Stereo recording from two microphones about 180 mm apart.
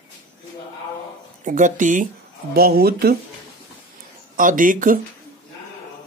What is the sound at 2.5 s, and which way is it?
Speech, 60° right (ahead or behind).